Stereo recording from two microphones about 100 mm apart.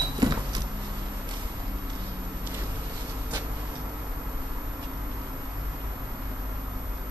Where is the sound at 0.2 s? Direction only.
45° right (ahead or behind).